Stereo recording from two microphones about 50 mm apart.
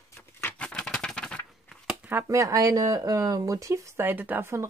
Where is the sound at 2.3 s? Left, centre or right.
Right.